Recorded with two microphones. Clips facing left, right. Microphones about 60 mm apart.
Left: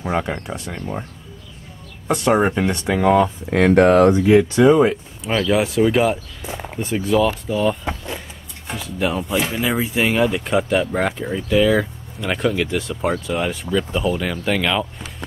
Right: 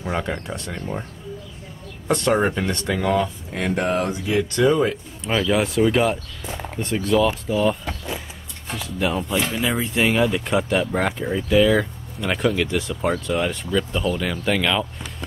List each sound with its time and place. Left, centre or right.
0.0 s speech: centre
2.0 s speech: centre
3.4 s speech: left
4.2 s speech: left
4.6 s speech: centre
5.2 s speech: centre